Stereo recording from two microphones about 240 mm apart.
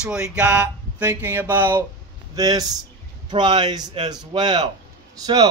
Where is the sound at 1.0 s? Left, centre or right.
Centre.